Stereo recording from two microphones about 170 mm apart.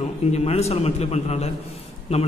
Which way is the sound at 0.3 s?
40° left (ahead or behind).